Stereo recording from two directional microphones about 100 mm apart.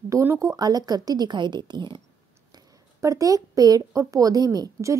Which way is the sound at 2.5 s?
35° right (ahead or behind).